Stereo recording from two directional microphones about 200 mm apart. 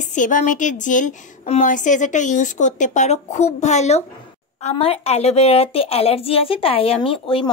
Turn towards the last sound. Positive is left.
turn(degrees=25)  # may be behind; listen again after turning